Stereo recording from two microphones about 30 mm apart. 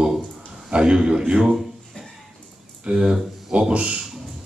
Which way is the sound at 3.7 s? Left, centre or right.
Right.